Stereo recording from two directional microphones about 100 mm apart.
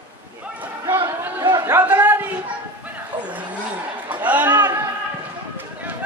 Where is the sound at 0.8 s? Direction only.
25° right (ahead or behind).